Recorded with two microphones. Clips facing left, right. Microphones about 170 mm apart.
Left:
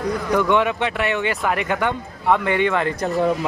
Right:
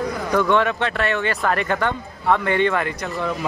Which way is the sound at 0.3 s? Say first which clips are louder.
Even; 15° left (ahead or behind).